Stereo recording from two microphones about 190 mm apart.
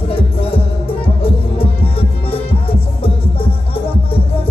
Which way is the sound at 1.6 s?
30° left (ahead or behind).